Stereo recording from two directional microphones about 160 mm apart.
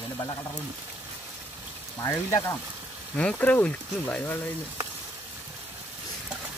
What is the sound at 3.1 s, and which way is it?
Speech, 10° left (ahead or behind).